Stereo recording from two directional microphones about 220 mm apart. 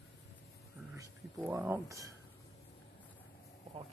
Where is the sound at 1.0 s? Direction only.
10° right (ahead or behind).